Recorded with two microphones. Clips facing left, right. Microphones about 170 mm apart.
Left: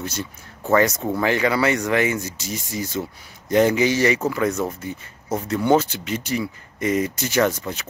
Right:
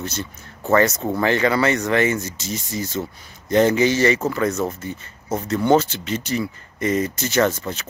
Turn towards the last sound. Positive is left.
turn(degrees=10)  # may be behind; listen again after turning